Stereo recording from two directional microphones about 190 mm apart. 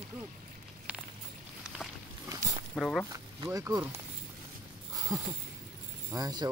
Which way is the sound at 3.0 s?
20° right (ahead or behind).